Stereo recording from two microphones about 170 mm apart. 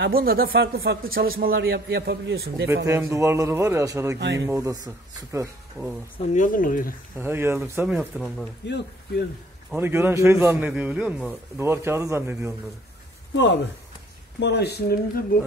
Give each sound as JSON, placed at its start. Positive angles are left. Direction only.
{"t": 0.0, "sound": "a man's voice", "side_deg": -65}
{"t": 2.7, "sound": "a man's voice", "side_deg": -15}
{"t": 6.1, "sound": "speech", "side_deg": 45}
{"t": 7.2, "sound": "a man's voice", "side_deg": -15}
{"t": 7.9, "sound": "speech", "side_deg": 0}
{"t": 9.8, "sound": "a man's voice", "side_deg": -15}
{"t": 13.3, "sound": "speech", "side_deg": 90}